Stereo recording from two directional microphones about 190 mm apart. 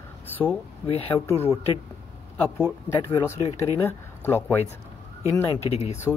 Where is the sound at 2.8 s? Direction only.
15° left (ahead or behind).